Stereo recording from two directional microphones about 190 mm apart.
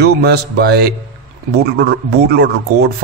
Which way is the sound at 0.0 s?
60° right (ahead or behind).